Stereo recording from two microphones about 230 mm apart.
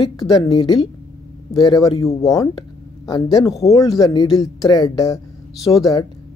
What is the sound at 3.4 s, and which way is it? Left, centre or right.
Speech, centre.